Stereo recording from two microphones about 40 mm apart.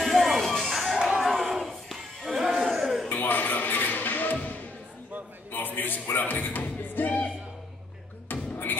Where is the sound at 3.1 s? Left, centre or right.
Left.